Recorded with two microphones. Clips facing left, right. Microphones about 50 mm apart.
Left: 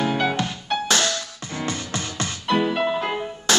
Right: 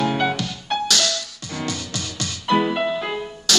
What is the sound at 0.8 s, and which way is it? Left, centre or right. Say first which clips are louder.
Music: left 2 dB; left.